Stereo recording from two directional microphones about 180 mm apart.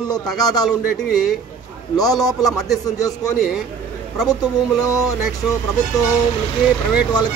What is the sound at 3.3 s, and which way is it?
A man's voice, centre (ahead or behind).